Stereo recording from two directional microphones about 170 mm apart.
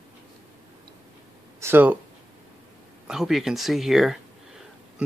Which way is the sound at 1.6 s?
10° right (ahead or behind).